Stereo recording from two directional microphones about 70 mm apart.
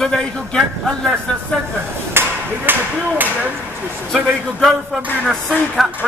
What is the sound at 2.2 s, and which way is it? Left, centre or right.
Ping, right.